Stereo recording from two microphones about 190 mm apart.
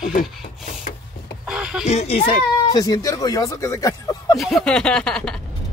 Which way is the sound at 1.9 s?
35° left (ahead or behind).